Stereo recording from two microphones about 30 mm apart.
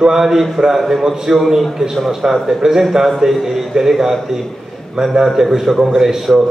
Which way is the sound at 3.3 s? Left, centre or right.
Centre.